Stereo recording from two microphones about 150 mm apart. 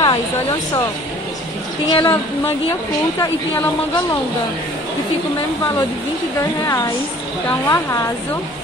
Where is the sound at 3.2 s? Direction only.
25° left (ahead or behind).